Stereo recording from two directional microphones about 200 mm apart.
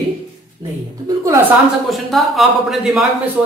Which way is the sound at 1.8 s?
Centre (ahead or behind).